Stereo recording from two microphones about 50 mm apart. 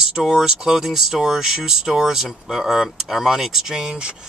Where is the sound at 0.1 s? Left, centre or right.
Centre.